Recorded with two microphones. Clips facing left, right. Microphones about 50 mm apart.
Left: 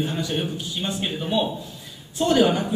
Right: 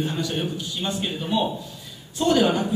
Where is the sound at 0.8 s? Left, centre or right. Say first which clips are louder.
Left 1 dB; centre.